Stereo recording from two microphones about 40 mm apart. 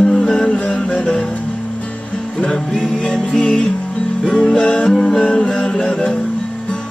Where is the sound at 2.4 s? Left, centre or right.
Left.